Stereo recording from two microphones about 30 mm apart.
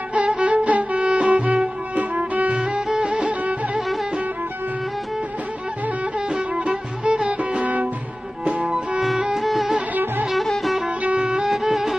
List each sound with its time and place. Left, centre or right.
0.4 s music: right
2.0 s music: right
2.5 s music: right
6.5 s music: right
7.6 s music: right
8.5 s music: right
9.4 s music: centre
11.6 s music: centre